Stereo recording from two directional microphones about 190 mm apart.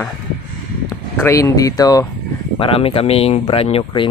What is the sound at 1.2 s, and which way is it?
Speech, 15° left (ahead or behind).